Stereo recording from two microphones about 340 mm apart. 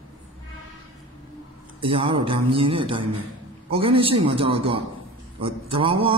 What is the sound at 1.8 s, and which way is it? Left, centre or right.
A man's voice, centre.